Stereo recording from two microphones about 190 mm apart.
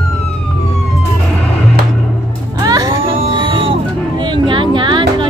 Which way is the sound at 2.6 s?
20° right (ahead or behind).